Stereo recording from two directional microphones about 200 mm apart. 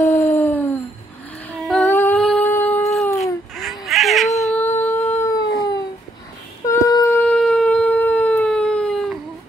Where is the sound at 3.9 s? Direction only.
Centre (ahead or behind).